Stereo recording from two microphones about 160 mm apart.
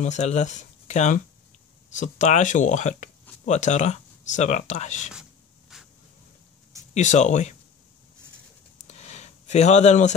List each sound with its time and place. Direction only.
0.0 s speech: 45° left (ahead or behind)
6.9 s speech: 50° left (ahead or behind)
8.8 s a sound: 45° left (ahead or behind)